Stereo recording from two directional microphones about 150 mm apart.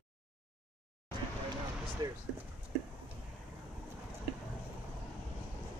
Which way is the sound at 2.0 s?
25° right (ahead or behind).